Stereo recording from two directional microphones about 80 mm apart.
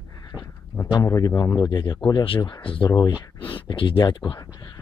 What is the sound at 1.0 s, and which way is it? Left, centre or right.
Speech, left.